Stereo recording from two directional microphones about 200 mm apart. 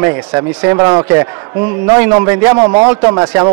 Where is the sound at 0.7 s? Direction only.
20° right (ahead or behind).